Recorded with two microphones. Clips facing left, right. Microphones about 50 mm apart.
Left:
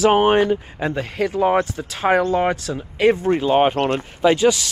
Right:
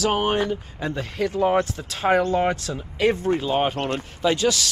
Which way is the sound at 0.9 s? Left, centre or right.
Centre.